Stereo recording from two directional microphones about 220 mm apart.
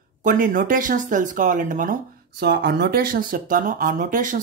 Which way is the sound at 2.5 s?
50° right (ahead or behind).